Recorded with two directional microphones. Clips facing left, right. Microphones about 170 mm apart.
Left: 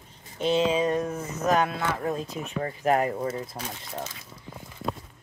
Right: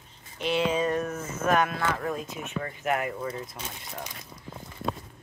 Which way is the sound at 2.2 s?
35° left (ahead or behind).